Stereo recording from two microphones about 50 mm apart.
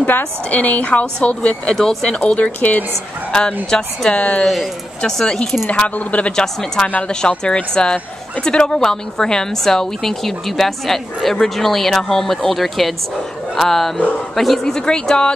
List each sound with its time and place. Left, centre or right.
0.0 s a woman's voice: left
3.3 s a woman's voice: centre
4.5 s speech: centre
5.7 s a woman's voice: left
6.3 s speech: centre